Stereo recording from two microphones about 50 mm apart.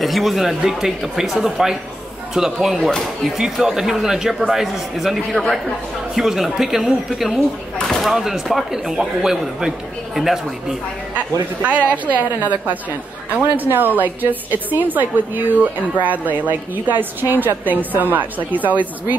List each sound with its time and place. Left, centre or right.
0.0 s a man's voice: centre
8.0 s a man's voice: centre
11.1 s a woman's voice: right